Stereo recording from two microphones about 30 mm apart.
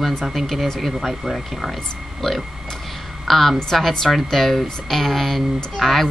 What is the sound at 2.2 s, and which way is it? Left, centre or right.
Speech, centre.